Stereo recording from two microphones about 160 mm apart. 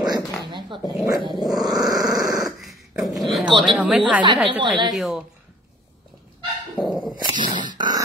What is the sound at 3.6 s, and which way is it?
Speech, centre (ahead or behind).